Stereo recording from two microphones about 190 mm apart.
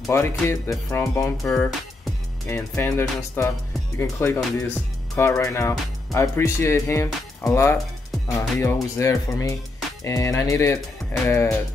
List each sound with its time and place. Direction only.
0.1 s speech: 15° left (ahead or behind)